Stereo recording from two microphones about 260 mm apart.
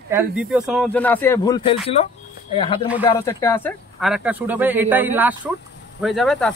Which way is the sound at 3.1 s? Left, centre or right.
Centre.